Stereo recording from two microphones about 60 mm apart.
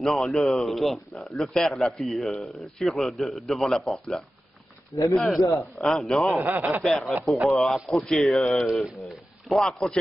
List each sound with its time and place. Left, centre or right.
0.0 s a man's voice: centre
6.3 s speech: right
6.8 s a man's voice: centre